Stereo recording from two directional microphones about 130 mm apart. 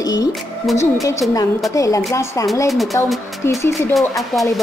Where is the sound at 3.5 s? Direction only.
20° left (ahead or behind).